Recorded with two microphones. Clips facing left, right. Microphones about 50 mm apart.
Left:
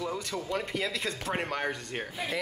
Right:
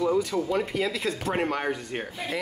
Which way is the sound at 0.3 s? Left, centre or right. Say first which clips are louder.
Right 6 dB; centre.